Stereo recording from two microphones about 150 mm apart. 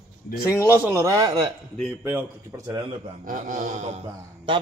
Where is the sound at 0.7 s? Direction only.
15° right (ahead or behind).